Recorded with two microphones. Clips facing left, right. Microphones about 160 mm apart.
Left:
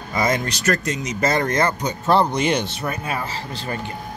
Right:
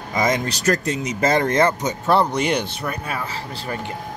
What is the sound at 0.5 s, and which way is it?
Speech, 35° right (ahead or behind).